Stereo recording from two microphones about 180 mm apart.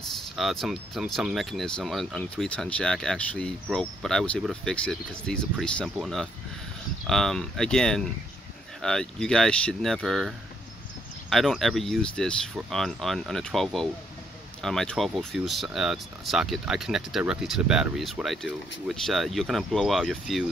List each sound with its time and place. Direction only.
0.4 s speech: centre (ahead or behind)